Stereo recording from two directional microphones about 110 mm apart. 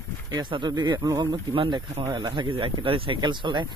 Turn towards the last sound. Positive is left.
turn(degrees=-45)  # may be behind; listen again after turning